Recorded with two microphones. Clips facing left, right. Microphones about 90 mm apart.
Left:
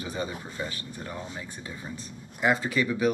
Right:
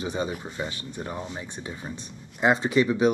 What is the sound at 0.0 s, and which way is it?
Speech, 20° right (ahead or behind).